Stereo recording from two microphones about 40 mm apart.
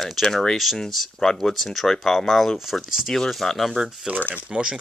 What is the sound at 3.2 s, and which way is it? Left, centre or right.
Speech, centre.